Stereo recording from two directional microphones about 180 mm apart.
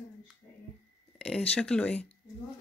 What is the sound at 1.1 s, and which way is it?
Speech, 5° left (ahead or behind).